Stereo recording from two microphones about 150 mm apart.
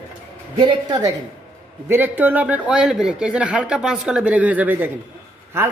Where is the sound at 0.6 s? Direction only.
30° right (ahead or behind).